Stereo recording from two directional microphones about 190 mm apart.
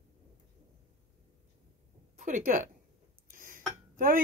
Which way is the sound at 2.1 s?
40° right (ahead or behind).